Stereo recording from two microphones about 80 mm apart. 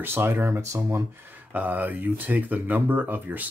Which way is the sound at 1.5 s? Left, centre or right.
Right.